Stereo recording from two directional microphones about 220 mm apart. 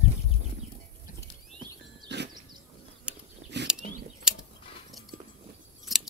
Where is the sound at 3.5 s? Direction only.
50° right (ahead or behind).